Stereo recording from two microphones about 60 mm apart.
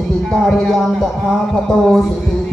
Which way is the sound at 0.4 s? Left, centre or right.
Centre.